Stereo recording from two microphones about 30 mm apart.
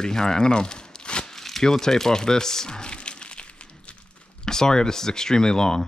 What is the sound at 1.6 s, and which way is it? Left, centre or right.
Speech, centre.